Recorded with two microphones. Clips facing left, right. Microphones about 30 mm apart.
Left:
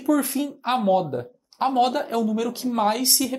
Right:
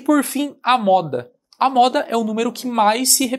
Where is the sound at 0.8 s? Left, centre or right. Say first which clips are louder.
Right 5 dB; right.